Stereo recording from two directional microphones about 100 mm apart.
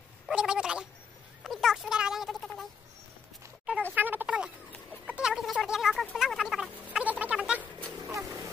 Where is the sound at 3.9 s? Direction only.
20° right (ahead or behind).